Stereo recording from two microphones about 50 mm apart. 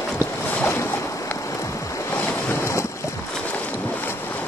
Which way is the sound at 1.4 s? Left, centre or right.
Left.